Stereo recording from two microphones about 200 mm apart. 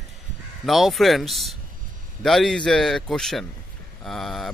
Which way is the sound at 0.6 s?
Centre (ahead or behind).